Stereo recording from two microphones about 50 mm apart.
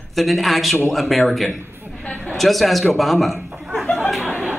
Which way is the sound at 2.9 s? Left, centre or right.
Centre.